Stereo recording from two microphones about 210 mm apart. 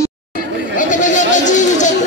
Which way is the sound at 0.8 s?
35° left (ahead or behind).